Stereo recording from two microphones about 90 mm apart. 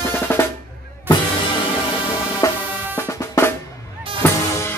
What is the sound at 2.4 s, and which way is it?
Music, 35° left (ahead or behind).